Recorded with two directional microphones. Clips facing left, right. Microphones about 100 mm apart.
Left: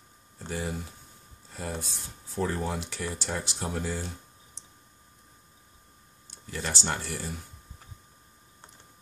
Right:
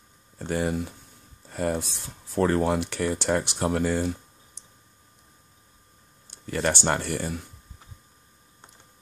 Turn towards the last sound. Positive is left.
turn(degrees=-60)  # may be behind; listen again after turning